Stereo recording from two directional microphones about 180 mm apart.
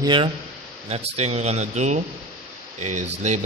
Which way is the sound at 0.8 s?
35° right (ahead or behind).